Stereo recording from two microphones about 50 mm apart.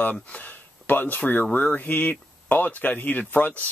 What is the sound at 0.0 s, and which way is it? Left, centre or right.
Speech, left.